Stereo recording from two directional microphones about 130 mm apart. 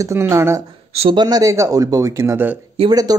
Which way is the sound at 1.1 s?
30° right (ahead or behind).